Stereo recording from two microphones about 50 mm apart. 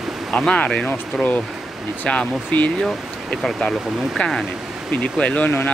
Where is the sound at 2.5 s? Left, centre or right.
Left.